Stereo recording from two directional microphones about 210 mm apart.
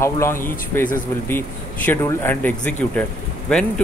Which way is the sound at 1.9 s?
10° left (ahead or behind).